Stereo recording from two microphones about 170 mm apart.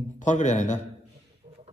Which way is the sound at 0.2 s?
45° left (ahead or behind).